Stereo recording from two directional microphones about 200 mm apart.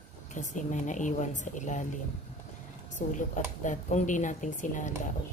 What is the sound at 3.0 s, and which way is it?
A woman's voice, 40° left (ahead or behind).